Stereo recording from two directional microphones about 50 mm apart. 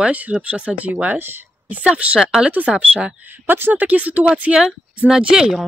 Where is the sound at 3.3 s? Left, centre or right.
Right.